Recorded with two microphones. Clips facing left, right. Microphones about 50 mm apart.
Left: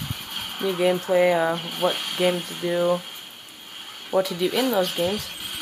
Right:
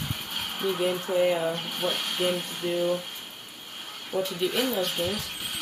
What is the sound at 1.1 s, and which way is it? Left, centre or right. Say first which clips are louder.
Speech: left 4 dB; left.